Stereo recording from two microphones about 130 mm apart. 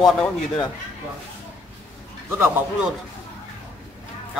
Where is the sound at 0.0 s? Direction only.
10° left (ahead or behind).